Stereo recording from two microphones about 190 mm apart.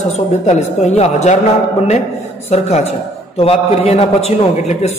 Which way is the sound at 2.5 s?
35° left (ahead or behind).